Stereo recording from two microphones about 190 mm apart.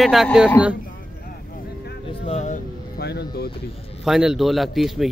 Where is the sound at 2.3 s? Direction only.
35° left (ahead or behind).